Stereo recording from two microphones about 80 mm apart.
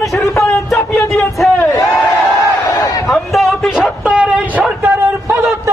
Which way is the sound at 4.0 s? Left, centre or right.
Centre.